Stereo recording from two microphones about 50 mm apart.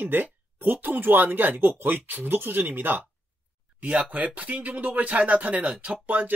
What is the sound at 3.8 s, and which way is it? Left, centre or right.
Speech, right.